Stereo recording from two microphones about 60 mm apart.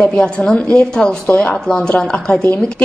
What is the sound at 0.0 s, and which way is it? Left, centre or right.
A woman's voice, centre.